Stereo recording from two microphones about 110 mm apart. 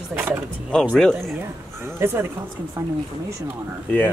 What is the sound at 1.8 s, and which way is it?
Speech, 20° right (ahead or behind).